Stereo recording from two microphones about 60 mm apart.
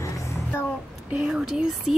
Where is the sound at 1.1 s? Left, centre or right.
Centre.